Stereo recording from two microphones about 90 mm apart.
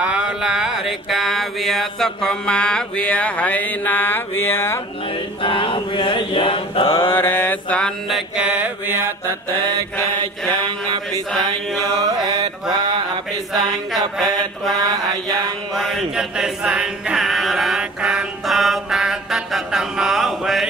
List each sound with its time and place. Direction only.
0.0 s mantra: 10° right (ahead or behind); by 4.7 s 25° left (ahead or behind)
5.4 s mantra: 75° left (ahead or behind)
7.0 s mantra: 25° left (ahead or behind)
8.4 s mantra: 15° right (ahead or behind)
11.8 s mantra: 45° right (ahead or behind)
13.5 s a sound: centre (ahead or behind)
15.7 s choir: centre (ahead or behind)